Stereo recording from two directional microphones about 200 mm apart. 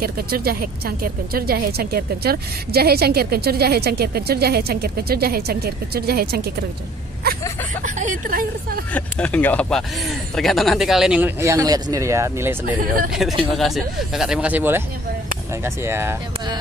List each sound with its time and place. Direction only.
0.0 s a woman's voice: 50° right (ahead or behind)
7.2 s vehicle: 50° right (ahead or behind)
7.8 s a woman's voice: 40° right (ahead or behind)
8.9 s speech: 5° left (ahead or behind); by 12.5 s 15° right (ahead or behind)
13.4 s speech: centre (ahead or behind)